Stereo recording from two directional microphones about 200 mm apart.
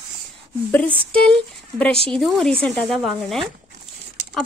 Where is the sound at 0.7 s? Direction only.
5° left (ahead or behind).